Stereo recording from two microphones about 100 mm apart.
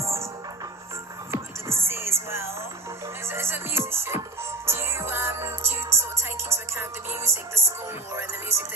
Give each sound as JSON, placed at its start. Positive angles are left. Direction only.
{"t": 0.0, "sound": "music", "side_deg": -30}
{"t": 1.3, "sound": "music", "side_deg": -25}
{"t": 8.1, "sound": "speech", "side_deg": -25}